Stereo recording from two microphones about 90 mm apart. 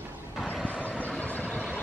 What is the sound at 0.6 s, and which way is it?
Vehicle, 15° left (ahead or behind).